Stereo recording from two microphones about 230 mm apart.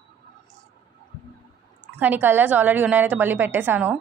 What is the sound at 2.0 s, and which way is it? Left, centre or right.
A woman's voice, centre.